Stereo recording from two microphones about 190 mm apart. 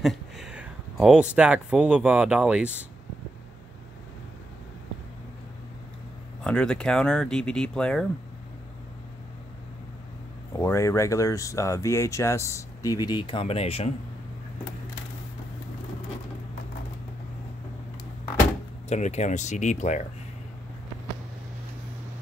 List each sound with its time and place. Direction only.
0.0 s speech: centre (ahead or behind)
6.4 s speech: 5° left (ahead or behind)
10.6 s speech: 15° left (ahead or behind); by 13.9 s 30° left (ahead or behind)
18.9 s speech: 35° left (ahead or behind)